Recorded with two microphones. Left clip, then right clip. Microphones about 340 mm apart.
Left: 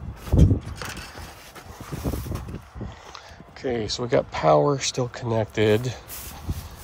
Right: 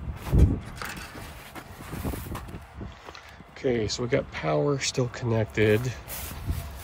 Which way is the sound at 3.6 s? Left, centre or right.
Centre.